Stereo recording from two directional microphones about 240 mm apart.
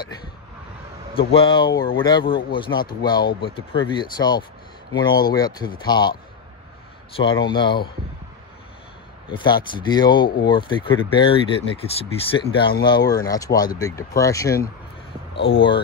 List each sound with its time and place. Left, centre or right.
1.1 s speech: left
7.2 s speech: centre
9.3 s speech: centre